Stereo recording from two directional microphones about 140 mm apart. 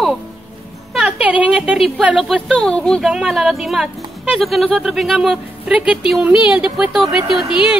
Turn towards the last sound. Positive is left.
turn(degrees=-5)  # may be behind; listen again after turning